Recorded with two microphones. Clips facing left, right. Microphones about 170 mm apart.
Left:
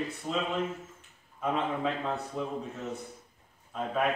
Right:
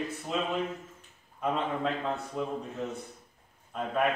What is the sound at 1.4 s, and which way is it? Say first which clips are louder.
Speech: even; centre (ahead or behind).